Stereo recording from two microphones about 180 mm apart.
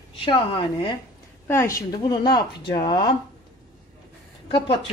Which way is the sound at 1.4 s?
15° left (ahead or behind).